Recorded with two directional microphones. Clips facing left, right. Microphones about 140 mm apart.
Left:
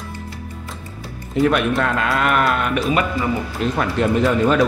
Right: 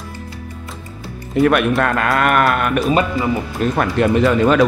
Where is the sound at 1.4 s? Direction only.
60° right (ahead or behind).